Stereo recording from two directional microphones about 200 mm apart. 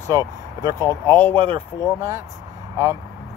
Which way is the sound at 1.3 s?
25° right (ahead or behind).